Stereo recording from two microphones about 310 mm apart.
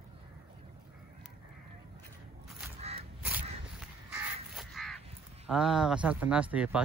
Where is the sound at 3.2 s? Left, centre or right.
Centre.